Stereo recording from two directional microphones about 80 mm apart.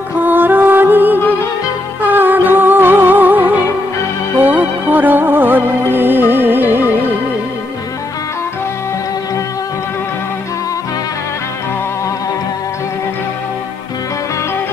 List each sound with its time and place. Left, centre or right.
0.2 s music: right